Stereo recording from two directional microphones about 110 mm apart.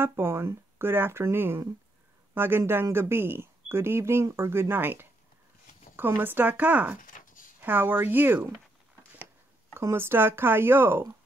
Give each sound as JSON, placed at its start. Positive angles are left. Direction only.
{"t": 0.0, "sound": "speech", "side_deg": -20}
{"t": 9.8, "sound": "speech", "side_deg": -25}